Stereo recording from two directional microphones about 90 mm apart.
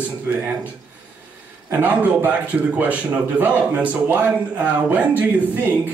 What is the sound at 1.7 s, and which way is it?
A man's voice, 20° right (ahead or behind).